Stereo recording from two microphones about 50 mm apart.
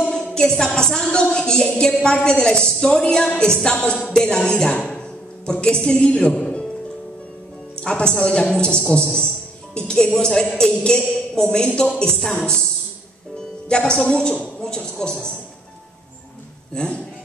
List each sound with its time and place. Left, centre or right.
0.1 s a sound: centre
0.7 s a woman's voice: centre
7.7 s speech: centre
13.7 s speech: centre
16.7 s speech: centre